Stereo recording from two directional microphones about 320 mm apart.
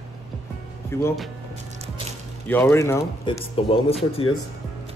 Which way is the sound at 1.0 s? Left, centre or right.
Centre.